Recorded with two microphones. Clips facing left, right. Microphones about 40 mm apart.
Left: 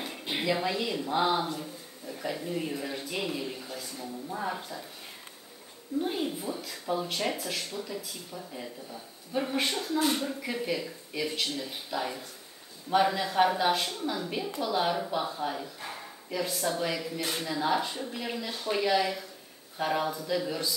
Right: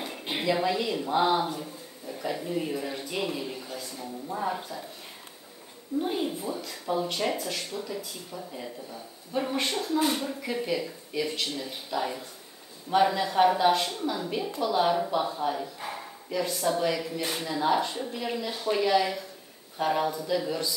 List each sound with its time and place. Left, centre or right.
0.3 s speech: centre
5.9 s speech: centre